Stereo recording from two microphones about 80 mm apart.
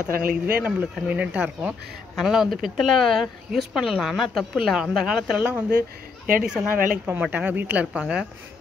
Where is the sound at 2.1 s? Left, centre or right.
Centre.